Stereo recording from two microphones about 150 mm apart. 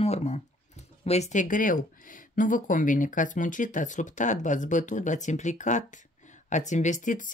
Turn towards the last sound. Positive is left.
turn(degrees=60)  # may be behind; listen again after turning